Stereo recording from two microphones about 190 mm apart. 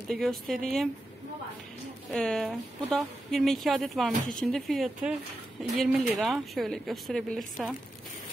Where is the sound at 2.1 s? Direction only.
Centre (ahead or behind).